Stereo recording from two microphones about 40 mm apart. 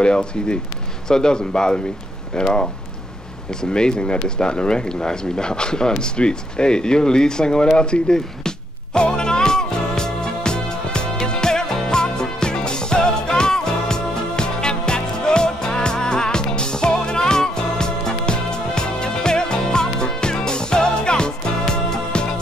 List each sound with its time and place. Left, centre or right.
0.0 s speech: left
3.7 s speech: centre
7.7 s music: left